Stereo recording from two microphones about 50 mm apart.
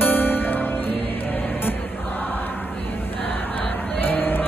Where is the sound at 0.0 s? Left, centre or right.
Left.